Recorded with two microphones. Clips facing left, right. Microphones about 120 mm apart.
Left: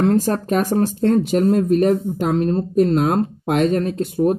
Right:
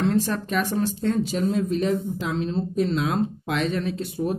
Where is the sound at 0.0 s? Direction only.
45° left (ahead or behind).